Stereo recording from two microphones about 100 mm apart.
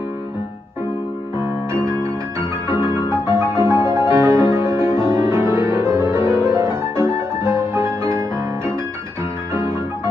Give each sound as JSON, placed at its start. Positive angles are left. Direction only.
{"t": 1.7, "sound": "music", "side_deg": -25}
{"t": 9.5, "sound": "piano", "side_deg": -25}